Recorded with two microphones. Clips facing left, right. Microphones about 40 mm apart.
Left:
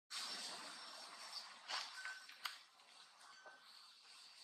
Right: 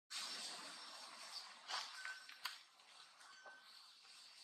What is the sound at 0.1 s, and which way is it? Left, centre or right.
Vehicle, centre.